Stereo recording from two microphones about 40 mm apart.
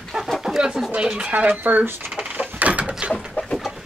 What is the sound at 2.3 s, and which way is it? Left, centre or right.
Door, right.